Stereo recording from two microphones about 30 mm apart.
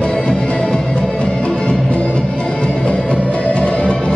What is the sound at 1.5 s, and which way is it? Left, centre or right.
Music, left.